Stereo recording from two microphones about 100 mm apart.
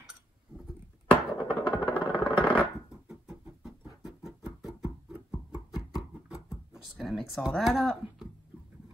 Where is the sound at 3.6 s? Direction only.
5° right (ahead or behind).